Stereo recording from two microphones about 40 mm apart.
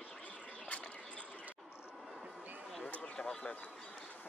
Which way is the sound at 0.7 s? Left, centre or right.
Left.